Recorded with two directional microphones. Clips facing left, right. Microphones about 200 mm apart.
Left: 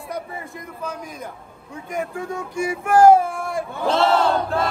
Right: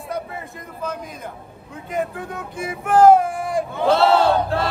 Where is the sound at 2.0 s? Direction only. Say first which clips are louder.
Right 1 dB; 15° left (ahead or behind).